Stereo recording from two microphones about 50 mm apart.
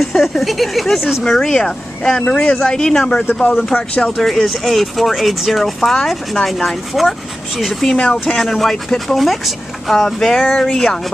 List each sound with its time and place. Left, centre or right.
0.0 s a sound: centre
0.4 s speech: centre
1.2 s speech: centre
3.7 s speech: left
4.2 s speech: centre
8.0 s speech: centre
8.4 s speech: centre